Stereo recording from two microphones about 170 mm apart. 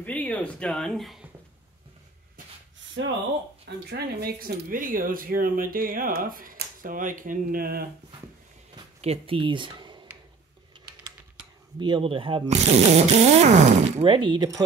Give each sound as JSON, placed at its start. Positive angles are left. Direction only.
{"t": 0.0, "sound": "speech", "side_deg": 10}
{"t": 3.9, "sound": "speech", "side_deg": -70}
{"t": 9.0, "sound": "speech", "side_deg": -35}
{"t": 11.8, "sound": "speech", "side_deg": -30}
{"t": 14.0, "sound": "speech", "side_deg": -30}